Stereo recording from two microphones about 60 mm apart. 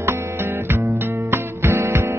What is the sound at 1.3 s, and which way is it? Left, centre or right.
Music, right.